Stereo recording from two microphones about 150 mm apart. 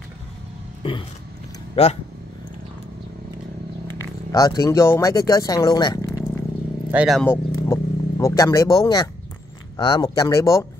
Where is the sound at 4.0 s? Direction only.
25° left (ahead or behind).